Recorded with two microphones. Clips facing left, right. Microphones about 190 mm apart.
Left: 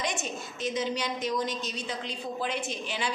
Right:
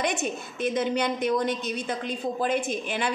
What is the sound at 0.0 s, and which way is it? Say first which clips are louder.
A woman's voice: right 5 dB; 60° right (ahead or behind).